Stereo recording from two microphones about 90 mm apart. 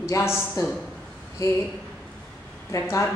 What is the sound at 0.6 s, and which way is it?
Speech, 45° left (ahead or behind).